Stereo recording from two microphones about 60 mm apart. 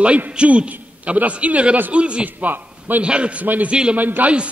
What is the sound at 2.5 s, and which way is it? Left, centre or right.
Speech, right.